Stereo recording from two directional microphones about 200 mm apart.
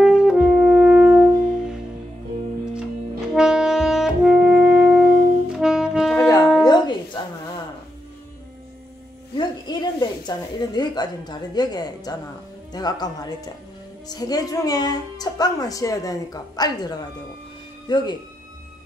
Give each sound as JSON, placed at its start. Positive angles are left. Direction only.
{"t": 0.0, "sound": "brass instrument", "side_deg": -5}
{"t": 3.3, "sound": "saxophone", "side_deg": -5}
{"t": 6.1, "sound": "music", "side_deg": 15}
{"t": 9.4, "sound": "a sound", "side_deg": 20}
{"t": 12.7, "sound": "a woman's voice", "side_deg": 20}